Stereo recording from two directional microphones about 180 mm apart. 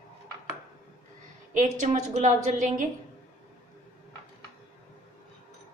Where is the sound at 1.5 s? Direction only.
45° right (ahead or behind).